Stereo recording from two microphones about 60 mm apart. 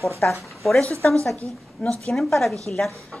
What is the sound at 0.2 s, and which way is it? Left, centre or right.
Speech, centre.